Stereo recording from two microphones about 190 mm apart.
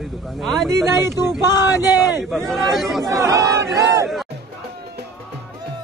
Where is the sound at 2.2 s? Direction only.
Centre (ahead or behind).